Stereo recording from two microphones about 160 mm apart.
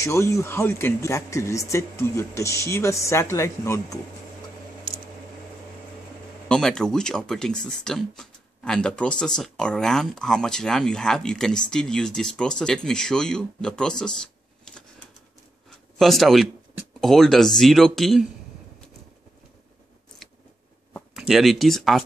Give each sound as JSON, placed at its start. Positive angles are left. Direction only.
{"t": 0.0, "sound": "speech", "side_deg": 20}
{"t": 6.5, "sound": "speech", "side_deg": 5}
{"t": 16.0, "sound": "speech", "side_deg": 0}
{"t": 21.1, "sound": "speech", "side_deg": 0}